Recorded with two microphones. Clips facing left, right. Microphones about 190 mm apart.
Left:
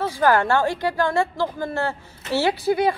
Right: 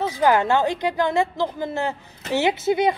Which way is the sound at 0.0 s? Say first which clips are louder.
Even; 20° right (ahead or behind).